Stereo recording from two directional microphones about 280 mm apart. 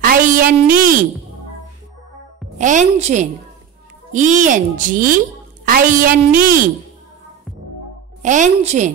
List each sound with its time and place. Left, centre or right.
0.0 s a sound: right
2.6 s a child's voice: right
8.2 s a child's voice: right